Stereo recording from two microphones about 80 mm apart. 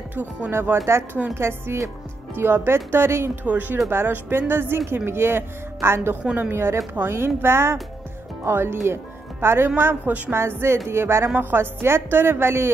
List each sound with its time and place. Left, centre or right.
0.1 s speech: right
6.2 s a woman's voice: centre
6.5 s speech: right
10.3 s speech: right